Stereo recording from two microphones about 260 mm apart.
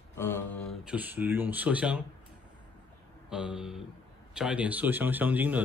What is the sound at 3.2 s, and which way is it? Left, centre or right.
A man's voice, centre.